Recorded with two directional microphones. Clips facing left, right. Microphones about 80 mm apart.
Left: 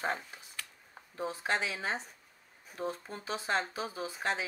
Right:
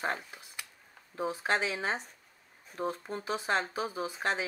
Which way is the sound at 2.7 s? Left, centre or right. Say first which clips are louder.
Right 3 dB; centre.